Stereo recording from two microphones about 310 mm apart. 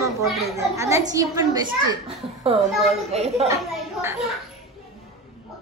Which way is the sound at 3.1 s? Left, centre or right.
Centre.